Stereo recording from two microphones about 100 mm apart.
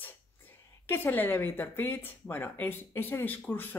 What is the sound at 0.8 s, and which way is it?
Speech, 20° left (ahead or behind).